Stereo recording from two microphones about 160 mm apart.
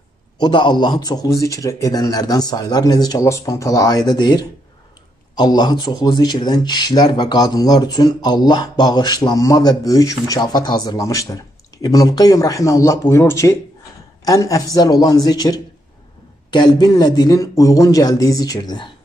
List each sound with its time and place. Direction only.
0.4 s speech: 30° left (ahead or behind)